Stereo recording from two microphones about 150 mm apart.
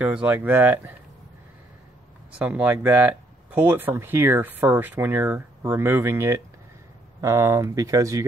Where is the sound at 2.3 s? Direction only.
10° right (ahead or behind).